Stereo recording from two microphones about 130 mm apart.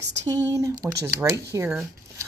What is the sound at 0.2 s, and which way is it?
A woman's voice, 25° right (ahead or behind).